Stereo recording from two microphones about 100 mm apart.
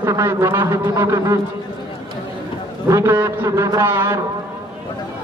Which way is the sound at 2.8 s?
30° right (ahead or behind).